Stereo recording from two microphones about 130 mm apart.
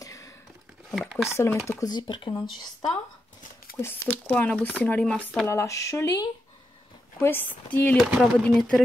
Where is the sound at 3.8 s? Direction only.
20° left (ahead or behind).